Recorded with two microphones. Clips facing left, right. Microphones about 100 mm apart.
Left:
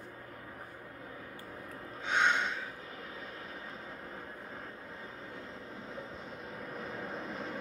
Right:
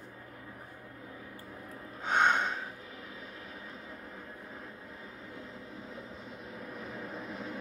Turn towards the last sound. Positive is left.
turn(degrees=0)  # may be behind; listen again after turning